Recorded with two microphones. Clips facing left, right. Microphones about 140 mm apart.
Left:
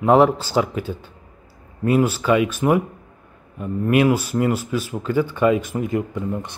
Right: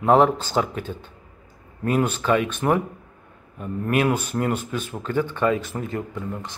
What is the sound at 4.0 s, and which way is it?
Speech, 5° left (ahead or behind).